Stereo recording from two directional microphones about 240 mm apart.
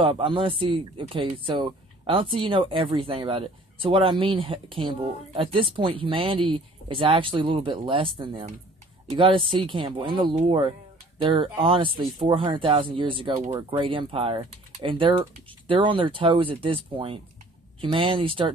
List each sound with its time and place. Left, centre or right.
0.0 s speech: right